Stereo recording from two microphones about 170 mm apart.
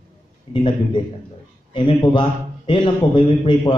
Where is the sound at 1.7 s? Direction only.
35° left (ahead or behind).